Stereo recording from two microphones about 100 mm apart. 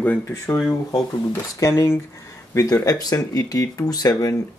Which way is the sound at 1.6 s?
30° left (ahead or behind).